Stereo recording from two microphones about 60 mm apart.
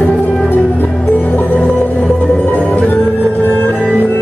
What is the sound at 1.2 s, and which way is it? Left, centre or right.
Music, left.